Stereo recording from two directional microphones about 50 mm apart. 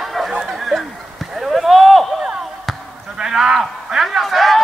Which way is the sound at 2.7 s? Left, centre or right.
Centre.